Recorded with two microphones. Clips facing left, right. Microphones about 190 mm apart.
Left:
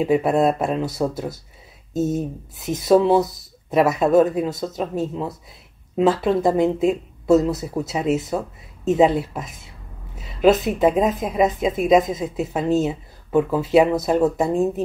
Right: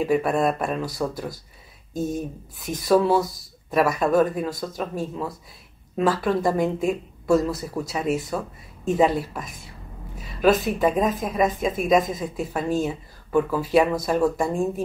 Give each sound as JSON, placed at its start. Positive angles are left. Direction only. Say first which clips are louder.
{"t": 0.0, "sound": "speech", "louder": "left 3 dB", "side_deg": 20}